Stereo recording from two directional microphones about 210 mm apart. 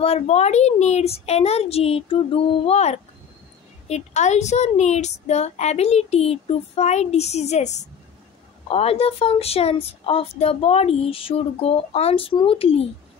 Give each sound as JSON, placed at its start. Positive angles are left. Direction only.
{"t": 0.0, "sound": "a woman's voice", "side_deg": 30}